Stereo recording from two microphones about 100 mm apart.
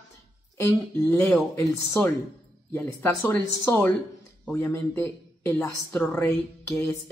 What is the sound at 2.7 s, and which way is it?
A woman's voice, 25° left (ahead or behind).